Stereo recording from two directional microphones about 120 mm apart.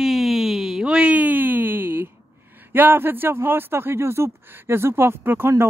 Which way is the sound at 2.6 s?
15° right (ahead or behind).